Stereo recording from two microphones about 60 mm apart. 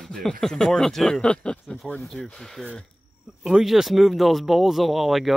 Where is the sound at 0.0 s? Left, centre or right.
Centre.